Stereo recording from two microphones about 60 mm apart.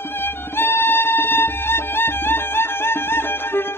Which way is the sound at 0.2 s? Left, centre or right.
Left.